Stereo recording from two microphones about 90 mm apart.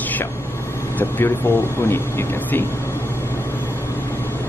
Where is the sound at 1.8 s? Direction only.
25° left (ahead or behind).